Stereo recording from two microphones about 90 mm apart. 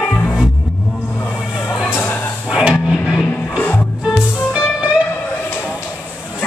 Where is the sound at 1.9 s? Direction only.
20° left (ahead or behind).